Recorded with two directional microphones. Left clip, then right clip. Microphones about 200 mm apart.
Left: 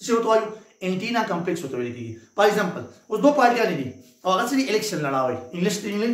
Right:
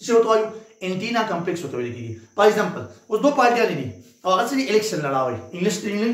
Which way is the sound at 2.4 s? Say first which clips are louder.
Right 2 dB; 5° left (ahead or behind).